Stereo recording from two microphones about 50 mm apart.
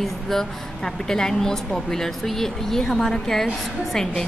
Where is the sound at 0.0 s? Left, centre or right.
Centre.